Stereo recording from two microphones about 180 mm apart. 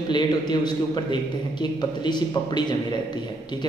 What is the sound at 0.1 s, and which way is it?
A man's voice, 25° left (ahead or behind).